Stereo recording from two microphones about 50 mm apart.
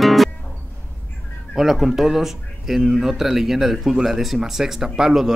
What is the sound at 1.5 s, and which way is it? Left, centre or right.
Speech, centre.